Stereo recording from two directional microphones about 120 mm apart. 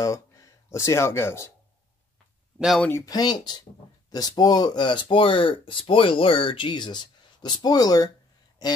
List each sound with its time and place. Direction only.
0.0 s speech: 25° left (ahead or behind)
3.1 s speech: 35° left (ahead or behind)